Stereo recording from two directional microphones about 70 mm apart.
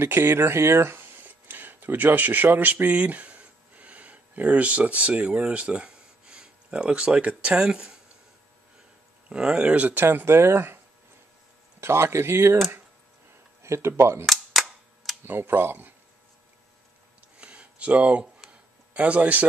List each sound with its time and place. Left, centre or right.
0.0 s speech: right; by 8.0 s centre
9.3 s speech: centre
10.0 s speech: right
11.8 s speech: right
13.6 s speech: right
14.2 s cap gun: centre
15.2 s speech: right
17.4 s a sound: centre
18.9 s speech: centre